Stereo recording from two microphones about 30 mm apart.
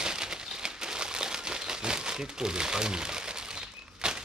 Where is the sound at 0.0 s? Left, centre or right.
Right.